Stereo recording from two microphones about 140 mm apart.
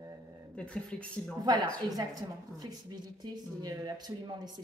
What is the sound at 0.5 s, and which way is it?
Speech, 10° left (ahead or behind).